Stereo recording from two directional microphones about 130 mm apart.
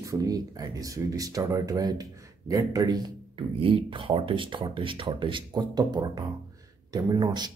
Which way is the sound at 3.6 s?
45° right (ahead or behind).